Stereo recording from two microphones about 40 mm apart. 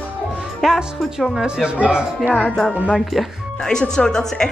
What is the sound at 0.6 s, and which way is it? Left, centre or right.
A woman's voice, centre.